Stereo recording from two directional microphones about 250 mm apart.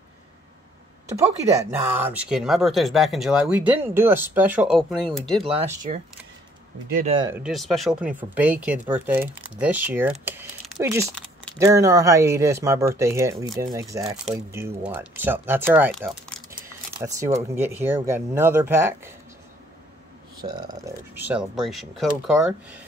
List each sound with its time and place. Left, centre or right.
1.6 s speech: centre
5.4 s speech: right
7.1 s speech: centre
7.3 s speech: centre
20.4 s speech: centre